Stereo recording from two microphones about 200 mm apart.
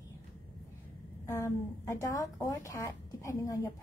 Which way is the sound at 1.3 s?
15° left (ahead or behind).